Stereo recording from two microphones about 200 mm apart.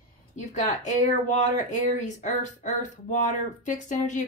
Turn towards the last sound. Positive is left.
turn(degrees=40)  # may be behind; listen again after turning